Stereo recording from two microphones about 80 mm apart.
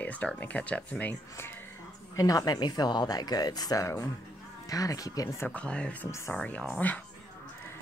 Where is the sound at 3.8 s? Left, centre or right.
Left.